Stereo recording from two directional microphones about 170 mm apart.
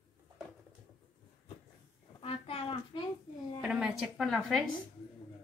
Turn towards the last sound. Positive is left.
turn(degrees=0)  # may be behind; listen again after turning